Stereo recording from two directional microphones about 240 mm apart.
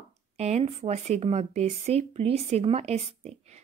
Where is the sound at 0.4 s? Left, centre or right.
Right.